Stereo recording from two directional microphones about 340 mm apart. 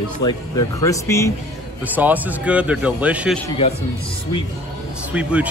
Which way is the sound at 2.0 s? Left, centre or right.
Centre.